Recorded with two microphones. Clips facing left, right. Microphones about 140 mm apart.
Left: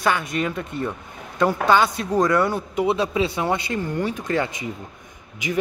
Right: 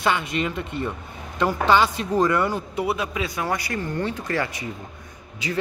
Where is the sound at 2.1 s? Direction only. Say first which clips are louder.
Left 3 dB; 10° right (ahead or behind).